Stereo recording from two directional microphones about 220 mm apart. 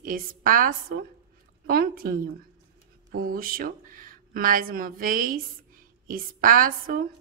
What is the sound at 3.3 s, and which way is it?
A woman's voice, 40° right (ahead or behind).